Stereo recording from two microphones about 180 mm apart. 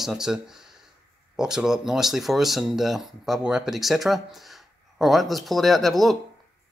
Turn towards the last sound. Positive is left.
turn(degrees=0)  # may be behind; listen again after turning